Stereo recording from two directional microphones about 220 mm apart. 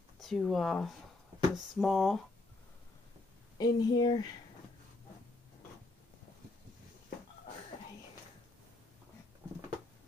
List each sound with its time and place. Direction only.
0.2 s speech: centre (ahead or behind)
3.5 s speech: 20° left (ahead or behind)